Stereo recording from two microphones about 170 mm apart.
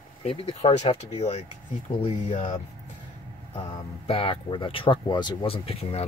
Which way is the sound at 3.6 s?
30° left (ahead or behind).